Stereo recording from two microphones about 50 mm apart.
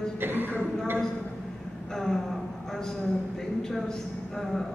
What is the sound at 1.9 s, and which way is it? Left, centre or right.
Speech, centre.